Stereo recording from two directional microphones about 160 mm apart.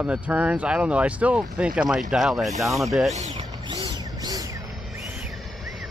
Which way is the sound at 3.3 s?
30° right (ahead or behind).